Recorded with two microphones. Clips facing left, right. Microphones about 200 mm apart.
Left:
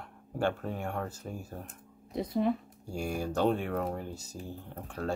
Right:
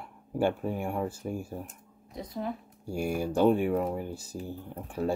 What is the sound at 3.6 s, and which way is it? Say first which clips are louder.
Speech: right 5 dB; 5° right (ahead or behind).